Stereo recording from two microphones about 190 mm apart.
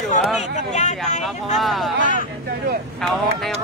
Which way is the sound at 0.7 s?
35° left (ahead or behind).